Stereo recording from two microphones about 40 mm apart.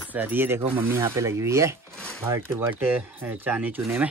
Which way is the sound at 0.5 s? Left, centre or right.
Right.